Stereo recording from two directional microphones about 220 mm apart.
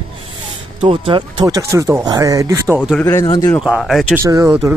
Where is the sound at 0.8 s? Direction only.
25° right (ahead or behind).